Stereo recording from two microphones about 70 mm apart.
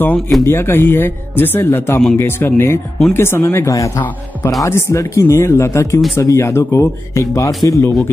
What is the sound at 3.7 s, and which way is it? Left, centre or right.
Speech, left.